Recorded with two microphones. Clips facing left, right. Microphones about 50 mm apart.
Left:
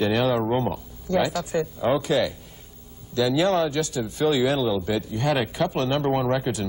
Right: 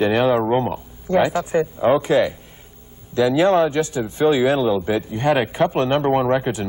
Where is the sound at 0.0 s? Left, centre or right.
Right.